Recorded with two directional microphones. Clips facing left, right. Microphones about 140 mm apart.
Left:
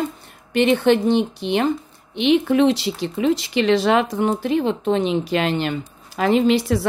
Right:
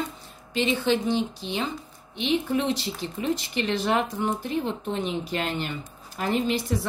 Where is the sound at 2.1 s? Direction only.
75° left (ahead or behind).